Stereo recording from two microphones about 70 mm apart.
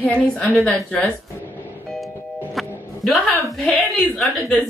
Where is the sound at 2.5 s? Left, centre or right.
Centre.